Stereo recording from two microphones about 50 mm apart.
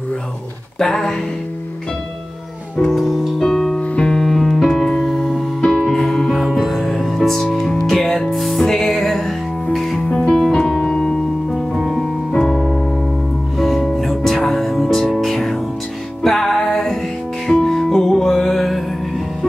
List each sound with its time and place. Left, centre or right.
0.8 s music: centre
2.8 s music: centre
3.9 s music: left
4.2 s music: centre
6.3 s music: centre
10.0 s music: centre
11.5 s music: centre
12.3 s keyboard: centre
13.6 s music: centre